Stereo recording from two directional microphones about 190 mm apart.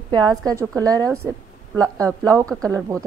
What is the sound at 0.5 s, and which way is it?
Speech, 15° right (ahead or behind).